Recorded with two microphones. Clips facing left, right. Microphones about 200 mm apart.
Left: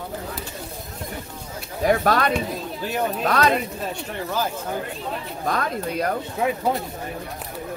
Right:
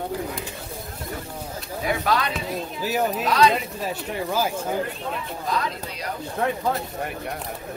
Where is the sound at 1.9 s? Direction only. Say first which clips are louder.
Left 5 dB; 50° left (ahead or behind).